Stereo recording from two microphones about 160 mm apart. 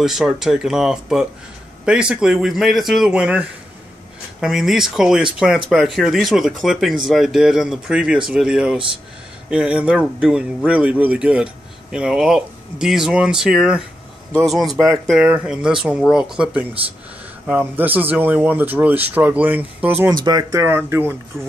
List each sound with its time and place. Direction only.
0.0 s speech: 5° right (ahead or behind)
20.1 s speech: 25° right (ahead or behind)